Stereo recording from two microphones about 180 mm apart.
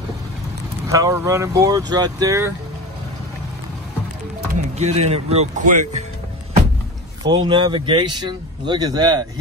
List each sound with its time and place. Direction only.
0.8 s speech: 20° right (ahead or behind)
4.7 s speech: 40° right (ahead or behind)
7.2 s speech: 25° right (ahead or behind)